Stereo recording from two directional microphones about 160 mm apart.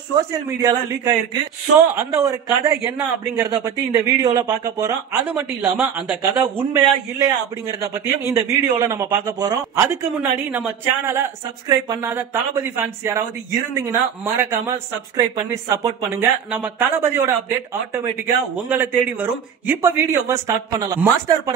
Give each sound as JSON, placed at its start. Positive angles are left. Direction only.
{"t": 0.3, "sound": "a man's voice", "side_deg": -20}
{"t": 8.4, "sound": "a man's voice", "side_deg": -20}
{"t": 10.5, "sound": "a man's voice", "side_deg": -15}
{"t": 11.7, "sound": "a man's voice", "side_deg": -25}
{"t": 12.1, "sound": "a man's voice", "side_deg": -15}